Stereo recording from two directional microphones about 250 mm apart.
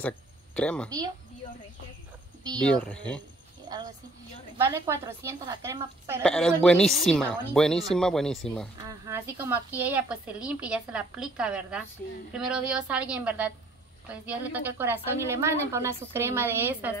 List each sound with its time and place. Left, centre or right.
0.6 s speech: centre
0.8 s a woman's voice: centre
2.6 s speech: centre
3.6 s a woman's voice: centre
6.2 s speech: centre
8.8 s a woman's voice: centre